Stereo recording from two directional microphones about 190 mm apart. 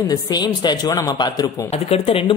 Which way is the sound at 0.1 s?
20° left (ahead or behind).